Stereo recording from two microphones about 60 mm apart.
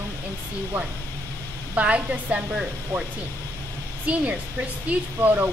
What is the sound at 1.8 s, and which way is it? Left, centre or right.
Speech, right.